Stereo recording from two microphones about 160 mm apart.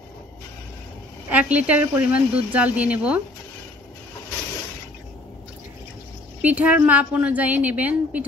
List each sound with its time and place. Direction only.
1.3 s a woman's voice: 10° right (ahead or behind)
6.4 s a woman's voice: 10° right (ahead or behind)